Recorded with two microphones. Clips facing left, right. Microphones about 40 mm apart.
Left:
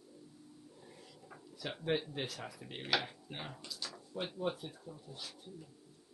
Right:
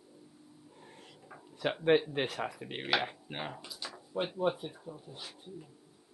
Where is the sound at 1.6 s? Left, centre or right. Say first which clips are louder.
Right 9 dB; right.